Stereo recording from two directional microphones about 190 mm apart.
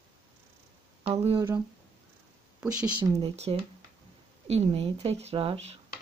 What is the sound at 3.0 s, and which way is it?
Speech, 30° right (ahead or behind).